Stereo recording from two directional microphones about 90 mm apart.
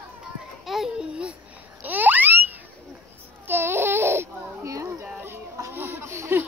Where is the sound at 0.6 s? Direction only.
5° right (ahead or behind).